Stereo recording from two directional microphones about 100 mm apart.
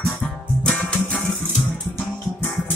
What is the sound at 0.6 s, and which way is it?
Music, 15° left (ahead or behind).